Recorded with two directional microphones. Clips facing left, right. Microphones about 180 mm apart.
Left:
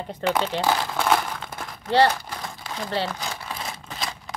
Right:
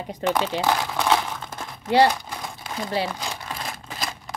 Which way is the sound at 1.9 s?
10° right (ahead or behind).